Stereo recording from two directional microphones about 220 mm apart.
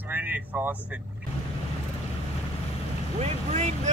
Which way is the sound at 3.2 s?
30° right (ahead or behind).